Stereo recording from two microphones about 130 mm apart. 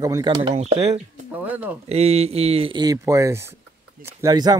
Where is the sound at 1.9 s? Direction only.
55° right (ahead or behind).